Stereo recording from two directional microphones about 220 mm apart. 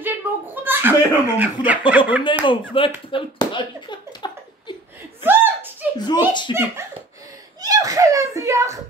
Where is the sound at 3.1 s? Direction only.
20° left (ahead or behind).